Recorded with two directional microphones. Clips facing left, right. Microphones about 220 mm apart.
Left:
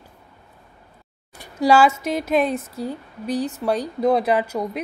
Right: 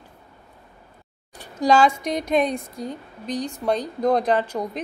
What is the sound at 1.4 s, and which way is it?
Speech, 10° left (ahead or behind).